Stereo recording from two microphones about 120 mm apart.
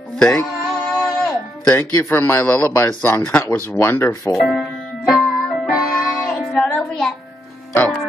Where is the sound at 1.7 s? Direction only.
25° left (ahead or behind).